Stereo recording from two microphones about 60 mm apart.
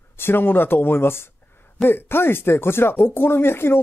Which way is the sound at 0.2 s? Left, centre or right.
Left.